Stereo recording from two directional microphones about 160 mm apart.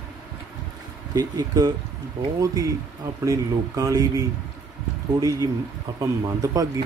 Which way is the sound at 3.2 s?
20° right (ahead or behind).